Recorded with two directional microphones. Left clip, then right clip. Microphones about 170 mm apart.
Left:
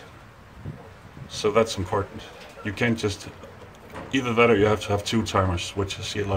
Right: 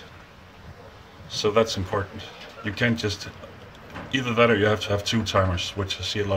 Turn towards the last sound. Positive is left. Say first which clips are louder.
# right 2 dB
turn(degrees=20)  # may be behind; listen again after turning